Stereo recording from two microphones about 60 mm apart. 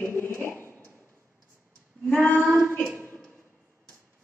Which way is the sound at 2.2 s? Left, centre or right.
Right.